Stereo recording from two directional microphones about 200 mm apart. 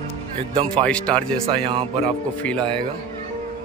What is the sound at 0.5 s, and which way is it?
Music, 30° right (ahead or behind).